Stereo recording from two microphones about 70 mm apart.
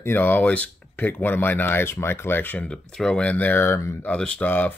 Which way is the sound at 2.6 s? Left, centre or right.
Centre.